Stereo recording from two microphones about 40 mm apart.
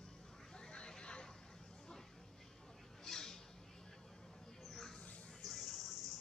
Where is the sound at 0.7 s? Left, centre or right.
Left.